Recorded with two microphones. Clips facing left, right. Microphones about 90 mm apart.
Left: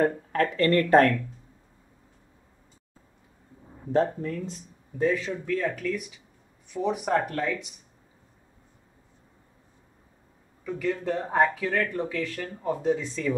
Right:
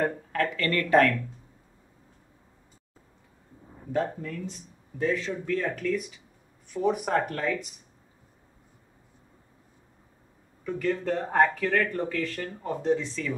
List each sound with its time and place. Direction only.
0.0 s speech: 35° left (ahead or behind)
3.9 s speech: 35° left (ahead or behind)
5.0 s speech: 10° left (ahead or behind)
10.6 s speech: centre (ahead or behind)
13.1 s speech: 25° left (ahead or behind)